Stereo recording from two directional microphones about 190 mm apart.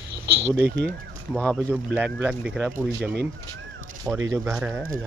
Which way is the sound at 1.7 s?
10° right (ahead or behind).